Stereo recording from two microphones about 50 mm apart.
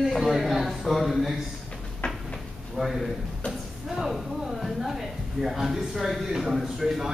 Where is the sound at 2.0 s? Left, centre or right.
Left.